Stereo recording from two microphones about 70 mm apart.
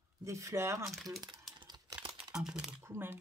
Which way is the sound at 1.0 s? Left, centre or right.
Right.